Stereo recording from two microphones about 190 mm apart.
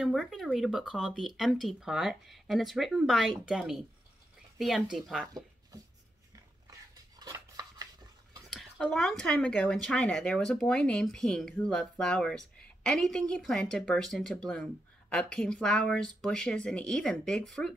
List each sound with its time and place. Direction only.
0.0 s speech: centre (ahead or behind)
7.2 s a sound: 20° right (ahead or behind)
8.5 s speech: centre (ahead or behind)